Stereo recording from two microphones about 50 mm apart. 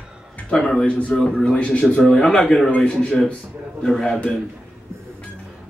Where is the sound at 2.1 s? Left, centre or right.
Centre.